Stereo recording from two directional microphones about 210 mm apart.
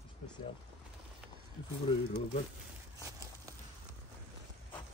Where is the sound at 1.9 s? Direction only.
25° left (ahead or behind).